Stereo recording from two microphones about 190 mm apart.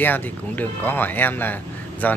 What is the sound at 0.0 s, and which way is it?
Speech, 10° left (ahead or behind).